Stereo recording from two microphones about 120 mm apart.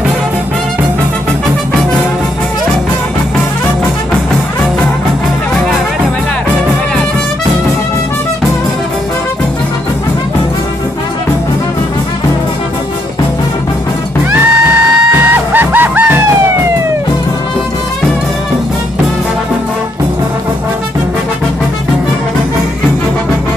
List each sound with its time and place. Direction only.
14.3 s music: 15° right (ahead or behind)